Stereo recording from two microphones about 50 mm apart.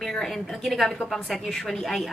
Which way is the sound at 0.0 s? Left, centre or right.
Centre.